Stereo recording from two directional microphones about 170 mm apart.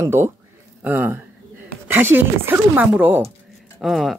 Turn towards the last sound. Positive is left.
turn(degrees=0)  # may be behind; listen again after turning